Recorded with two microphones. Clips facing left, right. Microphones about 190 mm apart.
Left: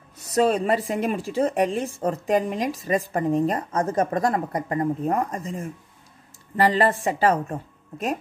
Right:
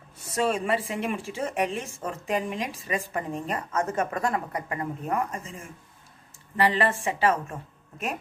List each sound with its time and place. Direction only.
0.2 s a woman's voice: 40° left (ahead or behind)